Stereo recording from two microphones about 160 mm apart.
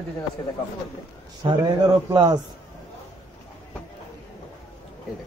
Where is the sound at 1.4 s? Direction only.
25° right (ahead or behind).